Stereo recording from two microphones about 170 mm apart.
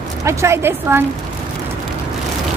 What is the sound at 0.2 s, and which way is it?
Speech, 15° right (ahead or behind).